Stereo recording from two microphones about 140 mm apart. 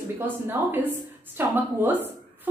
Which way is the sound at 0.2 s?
15° right (ahead or behind).